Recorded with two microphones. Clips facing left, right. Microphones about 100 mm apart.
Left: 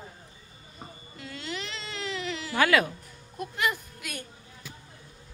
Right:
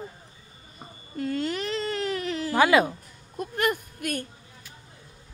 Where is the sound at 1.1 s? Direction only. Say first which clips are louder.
Right 10 dB; 45° right (ahead or behind).